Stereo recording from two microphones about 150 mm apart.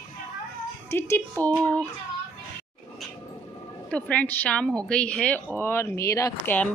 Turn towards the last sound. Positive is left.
turn(degrees=20)  # may be behind; listen again after turning